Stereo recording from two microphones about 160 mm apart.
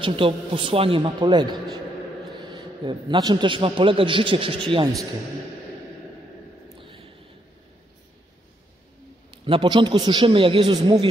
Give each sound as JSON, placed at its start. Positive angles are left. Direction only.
{"t": 0.0, "sound": "a man's voice", "side_deg": -35}
{"t": 6.8, "sound": "a sound", "side_deg": -35}
{"t": 9.3, "sound": "a man's voice", "side_deg": -30}